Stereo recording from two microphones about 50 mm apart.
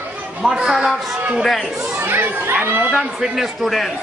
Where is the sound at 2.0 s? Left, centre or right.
Right.